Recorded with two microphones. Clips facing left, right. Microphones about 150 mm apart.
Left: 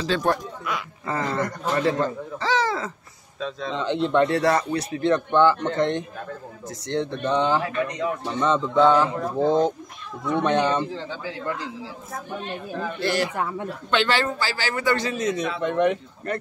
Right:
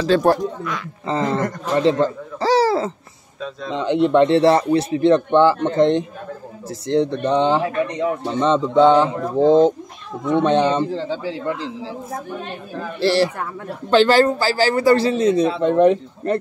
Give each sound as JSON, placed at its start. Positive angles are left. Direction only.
{"t": 0.0, "sound": "speech", "side_deg": -45}
{"t": 1.0, "sound": "speech", "side_deg": -25}
{"t": 2.4, "sound": "a sound", "side_deg": -35}
{"t": 3.3, "sound": "speech", "side_deg": -5}
{"t": 4.0, "sound": "a man's voice", "side_deg": -25}